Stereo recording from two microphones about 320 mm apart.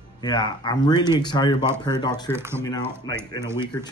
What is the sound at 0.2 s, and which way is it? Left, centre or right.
Speech, centre.